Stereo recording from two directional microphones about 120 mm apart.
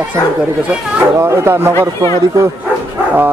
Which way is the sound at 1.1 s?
20° right (ahead or behind).